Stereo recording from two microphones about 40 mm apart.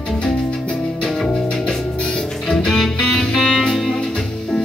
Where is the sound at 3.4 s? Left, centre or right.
Centre.